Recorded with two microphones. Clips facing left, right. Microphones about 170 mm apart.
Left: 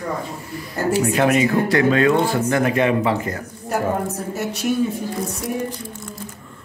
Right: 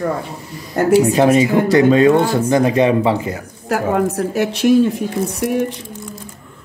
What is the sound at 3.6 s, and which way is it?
Speech, 90° right.